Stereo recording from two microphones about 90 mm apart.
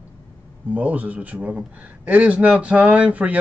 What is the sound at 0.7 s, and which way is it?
Speech, 15° right (ahead or behind).